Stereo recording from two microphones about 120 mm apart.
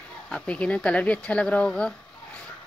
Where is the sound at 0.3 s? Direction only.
10° left (ahead or behind).